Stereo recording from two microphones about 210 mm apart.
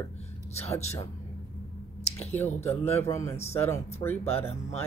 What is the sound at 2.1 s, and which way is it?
Speech, 10° left (ahead or behind).